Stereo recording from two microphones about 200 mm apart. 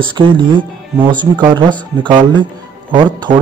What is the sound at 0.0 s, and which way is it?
Speech, 25° right (ahead or behind).